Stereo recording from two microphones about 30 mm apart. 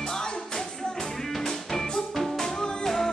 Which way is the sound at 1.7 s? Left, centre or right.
Centre.